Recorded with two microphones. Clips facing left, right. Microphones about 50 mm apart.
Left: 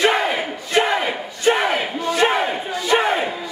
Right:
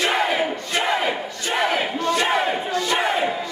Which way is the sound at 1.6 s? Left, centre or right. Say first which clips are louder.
Left 1 dB; centre.